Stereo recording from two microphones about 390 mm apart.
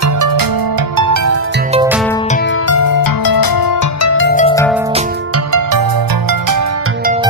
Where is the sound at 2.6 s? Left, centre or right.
Left.